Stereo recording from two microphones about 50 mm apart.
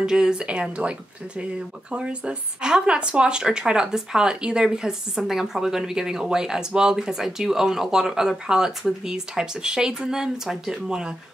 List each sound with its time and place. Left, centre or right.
0.0 s a woman's voice: centre